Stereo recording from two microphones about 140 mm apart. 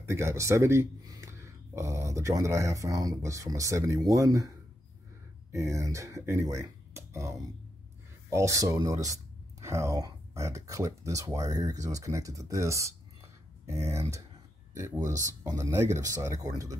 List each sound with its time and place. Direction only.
0.0 s speech: 20° right (ahead or behind)
5.5 s speech: 20° right (ahead or behind)